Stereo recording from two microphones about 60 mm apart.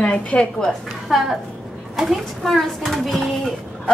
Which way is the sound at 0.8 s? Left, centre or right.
Centre.